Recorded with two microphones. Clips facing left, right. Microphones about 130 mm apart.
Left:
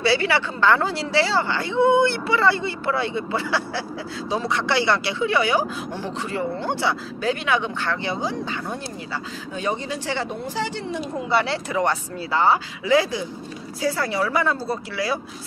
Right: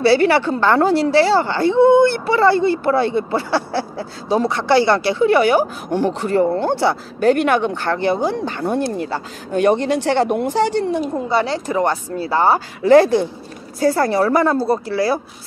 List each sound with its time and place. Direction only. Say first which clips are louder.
0.0 s a woman's voice: right 7 dB; 45° right (ahead or behind)
13.7 s a woman's voice: right 8 dB; 45° right (ahead or behind)